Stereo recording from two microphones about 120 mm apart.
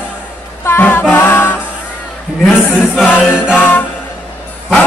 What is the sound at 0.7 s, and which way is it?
Music, 20° left (ahead or behind).